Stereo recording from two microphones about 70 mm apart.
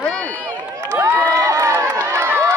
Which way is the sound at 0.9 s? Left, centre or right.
Right.